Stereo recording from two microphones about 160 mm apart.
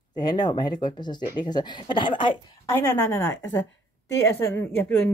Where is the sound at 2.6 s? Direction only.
15° left (ahead or behind).